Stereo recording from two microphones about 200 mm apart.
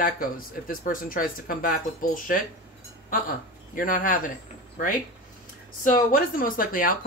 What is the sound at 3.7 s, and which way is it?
Speech, 45° left (ahead or behind).